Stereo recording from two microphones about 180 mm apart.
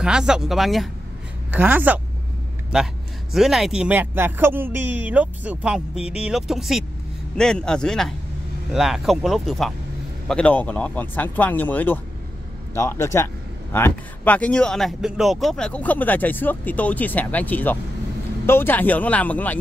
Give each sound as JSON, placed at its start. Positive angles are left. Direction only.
{"t": 0.0, "sound": "speech", "side_deg": -5}
{"t": 3.3, "sound": "speech", "side_deg": 0}